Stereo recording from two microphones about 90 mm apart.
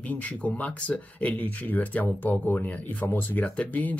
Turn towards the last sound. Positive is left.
turn(degrees=15)  # may be behind; listen again after turning